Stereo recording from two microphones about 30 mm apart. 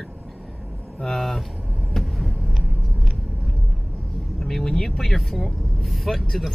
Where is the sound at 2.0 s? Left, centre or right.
Centre.